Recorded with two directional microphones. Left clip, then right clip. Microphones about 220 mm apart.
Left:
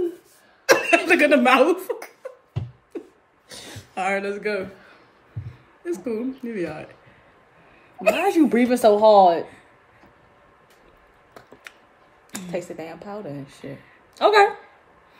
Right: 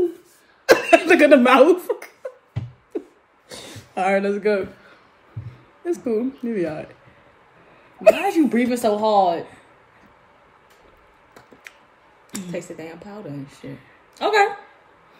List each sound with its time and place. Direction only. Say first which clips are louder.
0.7 s speech: right 3 dB; 10° right (ahead or behind)
2.2 s a sound: right 6 dB; 5° right (ahead or behind)
3.9 s a woman's voice: right 4 dB; 10° right (ahead or behind)
5.9 s a woman's voice: right 4 dB; 10° right (ahead or behind)
8.3 s speech: left 1 dB; 25° left (ahead or behind)
12.4 s speech: left 2 dB; 20° left (ahead or behind)